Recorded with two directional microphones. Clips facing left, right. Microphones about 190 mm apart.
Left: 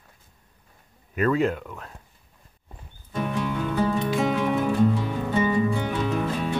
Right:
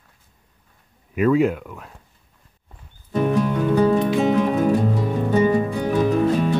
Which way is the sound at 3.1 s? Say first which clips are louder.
Right 8 dB; 45° right (ahead or behind).